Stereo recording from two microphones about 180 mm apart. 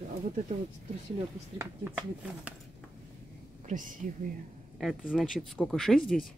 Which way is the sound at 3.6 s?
45° right (ahead or behind).